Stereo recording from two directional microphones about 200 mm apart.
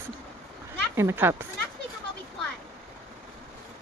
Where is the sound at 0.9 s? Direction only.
10° right (ahead or behind).